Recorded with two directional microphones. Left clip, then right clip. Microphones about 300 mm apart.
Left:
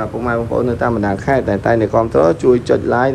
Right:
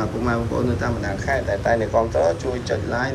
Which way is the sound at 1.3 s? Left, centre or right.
Left.